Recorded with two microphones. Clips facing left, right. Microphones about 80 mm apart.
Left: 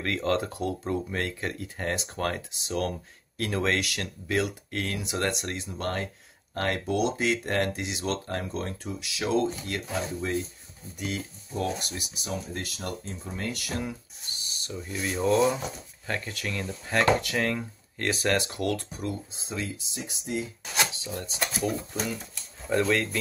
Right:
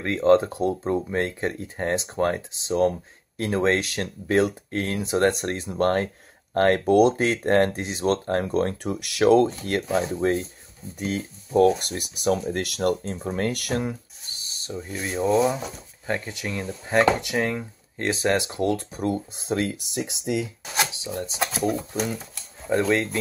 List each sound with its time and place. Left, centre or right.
0.0 s speech: right
9.9 s speech: right
11.5 s speech: right
12.3 s speech: right
14.2 s speech: right
18.9 s speech: right
22.7 s speech: right